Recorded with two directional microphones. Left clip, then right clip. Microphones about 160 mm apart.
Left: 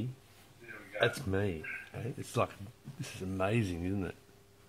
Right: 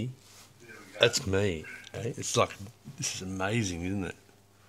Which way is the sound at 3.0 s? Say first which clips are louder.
Right 3 dB; 5° left (ahead or behind).